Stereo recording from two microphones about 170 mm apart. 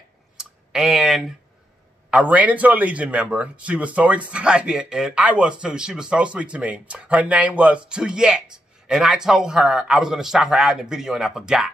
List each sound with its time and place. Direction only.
0.4 s clicking: centre (ahead or behind)
2.0 s a man's voice: 10° right (ahead or behind)